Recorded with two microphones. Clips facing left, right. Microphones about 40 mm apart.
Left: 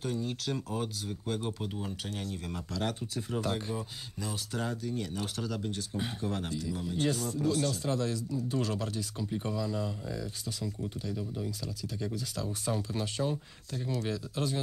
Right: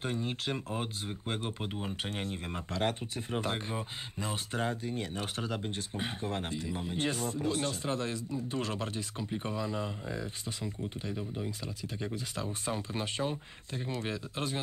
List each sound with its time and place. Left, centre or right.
0.0 s speech: right